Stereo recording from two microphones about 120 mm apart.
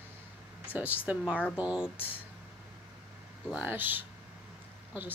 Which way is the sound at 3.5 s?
15° right (ahead or behind).